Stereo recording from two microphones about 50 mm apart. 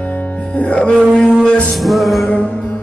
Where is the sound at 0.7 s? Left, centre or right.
Left.